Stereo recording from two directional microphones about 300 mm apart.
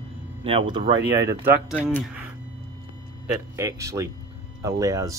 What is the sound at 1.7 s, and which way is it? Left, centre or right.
Speech, centre.